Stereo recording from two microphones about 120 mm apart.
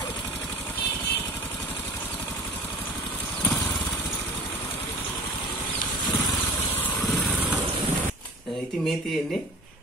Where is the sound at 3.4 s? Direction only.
15° left (ahead or behind).